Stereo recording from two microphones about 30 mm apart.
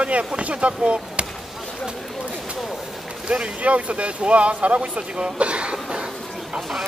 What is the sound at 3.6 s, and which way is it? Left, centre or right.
Speech, right.